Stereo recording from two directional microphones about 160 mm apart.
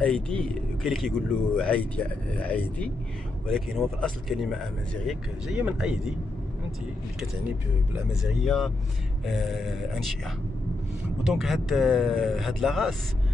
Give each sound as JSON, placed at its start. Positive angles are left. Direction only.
{"t": 0.0, "sound": "speech", "side_deg": 5}
{"t": 8.2, "sound": "speech", "side_deg": 0}
{"t": 11.2, "sound": "speech", "side_deg": 0}